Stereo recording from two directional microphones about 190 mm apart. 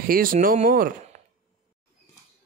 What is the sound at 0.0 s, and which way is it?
Speech, 50° right (ahead or behind).